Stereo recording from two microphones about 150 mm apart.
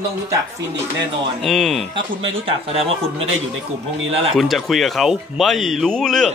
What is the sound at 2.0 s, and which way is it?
Speech, 35° right (ahead or behind).